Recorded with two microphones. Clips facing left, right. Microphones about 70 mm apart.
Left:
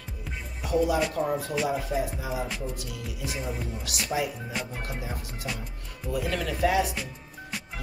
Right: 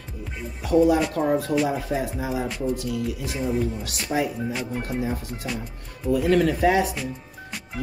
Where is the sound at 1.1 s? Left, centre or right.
Right.